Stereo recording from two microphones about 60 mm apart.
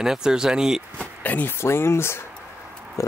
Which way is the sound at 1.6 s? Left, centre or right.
Left.